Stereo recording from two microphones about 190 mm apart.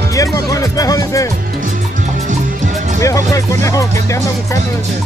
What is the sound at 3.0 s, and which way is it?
Music, 15° left (ahead or behind).